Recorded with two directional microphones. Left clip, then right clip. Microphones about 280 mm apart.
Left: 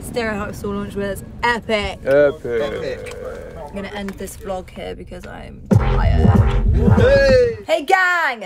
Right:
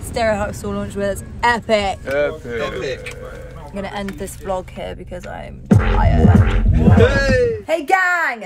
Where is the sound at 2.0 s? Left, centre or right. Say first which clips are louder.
Left 5 dB; left.